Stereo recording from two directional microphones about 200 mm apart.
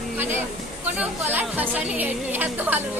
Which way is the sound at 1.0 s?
10° right (ahead or behind).